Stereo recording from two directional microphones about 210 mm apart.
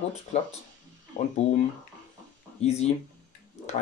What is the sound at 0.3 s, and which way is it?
Speech, 35° left (ahead or behind).